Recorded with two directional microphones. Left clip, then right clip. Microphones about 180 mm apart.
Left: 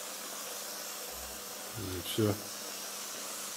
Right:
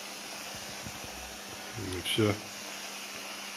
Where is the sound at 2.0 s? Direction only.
15° left (ahead or behind).